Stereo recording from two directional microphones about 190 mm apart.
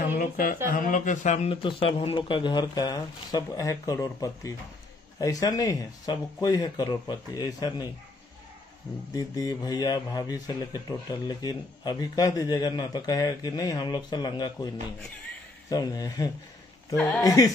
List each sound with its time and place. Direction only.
0.2 s speech: 45° left (ahead or behind); by 7.9 s 20° left (ahead or behind)
9.1 s speech: 20° left (ahead or behind)
15.7 s speech: 20° left (ahead or behind)
16.9 s speech: 5° left (ahead or behind)
17.2 s speech: 20° left (ahead or behind)